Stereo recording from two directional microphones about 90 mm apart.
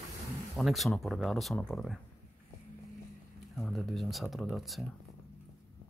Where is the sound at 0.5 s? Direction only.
Centre (ahead or behind).